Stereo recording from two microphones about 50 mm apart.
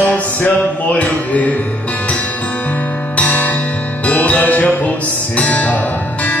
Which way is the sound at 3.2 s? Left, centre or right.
Left.